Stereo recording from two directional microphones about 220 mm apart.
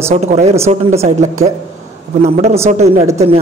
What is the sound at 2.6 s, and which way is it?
Speech, 30° right (ahead or behind).